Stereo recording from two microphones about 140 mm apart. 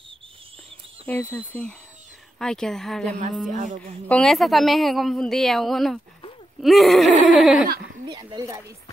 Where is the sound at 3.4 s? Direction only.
65° right (ahead or behind).